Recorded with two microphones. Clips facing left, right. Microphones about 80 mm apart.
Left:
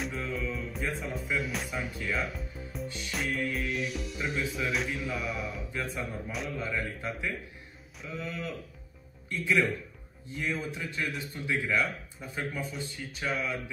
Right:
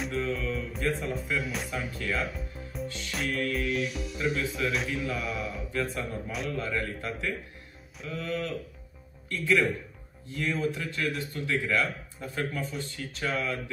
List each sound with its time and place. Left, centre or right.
0.0 s music: centre
3.1 s speech: centre
5.7 s speech: centre
6.3 s speech: centre
6.6 s speech: centre
10.3 s speech: centre